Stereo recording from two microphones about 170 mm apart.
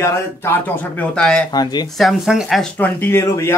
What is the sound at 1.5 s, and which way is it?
Speech, 25° left (ahead or behind).